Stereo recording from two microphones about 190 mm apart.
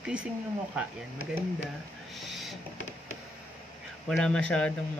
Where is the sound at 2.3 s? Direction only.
Centre (ahead or behind).